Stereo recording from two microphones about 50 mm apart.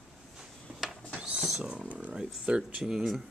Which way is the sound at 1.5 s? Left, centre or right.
Centre.